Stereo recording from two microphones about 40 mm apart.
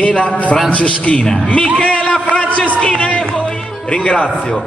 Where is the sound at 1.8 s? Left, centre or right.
Left.